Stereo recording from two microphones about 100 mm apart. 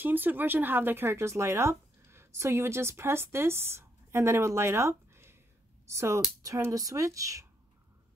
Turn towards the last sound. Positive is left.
turn(degrees=-35)  # may be behind; listen again after turning